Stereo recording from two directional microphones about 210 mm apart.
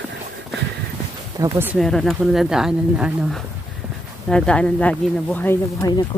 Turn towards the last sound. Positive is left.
turn(degrees=20)  # may be behind; listen again after turning